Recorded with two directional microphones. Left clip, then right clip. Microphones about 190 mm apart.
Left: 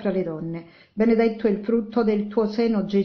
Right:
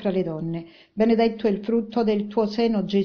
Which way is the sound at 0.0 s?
30° right (ahead or behind).